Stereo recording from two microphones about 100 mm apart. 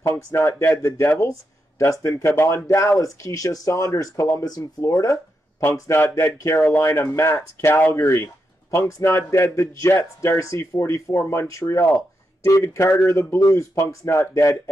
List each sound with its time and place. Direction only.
0.0 s speech: 30° left (ahead or behind)